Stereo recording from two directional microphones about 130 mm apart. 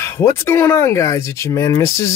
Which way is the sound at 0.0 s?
20° left (ahead or behind).